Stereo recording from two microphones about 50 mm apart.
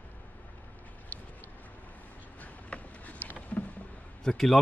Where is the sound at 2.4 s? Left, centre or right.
Left.